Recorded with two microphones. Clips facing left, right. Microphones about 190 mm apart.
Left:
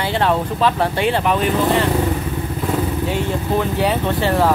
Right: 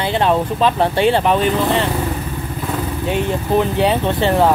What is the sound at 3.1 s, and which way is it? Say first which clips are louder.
Speech: right 2 dB; 20° right (ahead or behind).